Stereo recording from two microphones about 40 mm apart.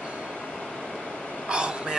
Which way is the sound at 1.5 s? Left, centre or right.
Right.